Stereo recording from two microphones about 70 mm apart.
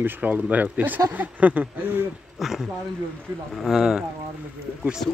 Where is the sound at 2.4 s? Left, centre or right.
Centre.